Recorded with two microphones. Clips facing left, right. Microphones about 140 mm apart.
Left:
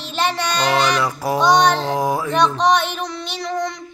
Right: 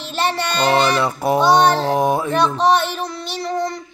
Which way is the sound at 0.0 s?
Centre (ahead or behind).